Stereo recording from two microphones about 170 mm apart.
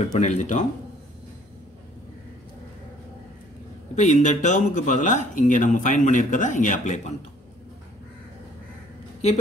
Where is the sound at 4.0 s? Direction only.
45° left (ahead or behind).